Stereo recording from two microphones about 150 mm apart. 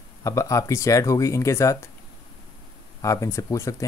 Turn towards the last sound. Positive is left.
turn(degrees=20)  # may be behind; listen again after turning